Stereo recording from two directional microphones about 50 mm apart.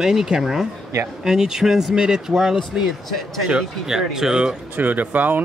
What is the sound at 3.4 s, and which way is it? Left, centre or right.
Speech, centre.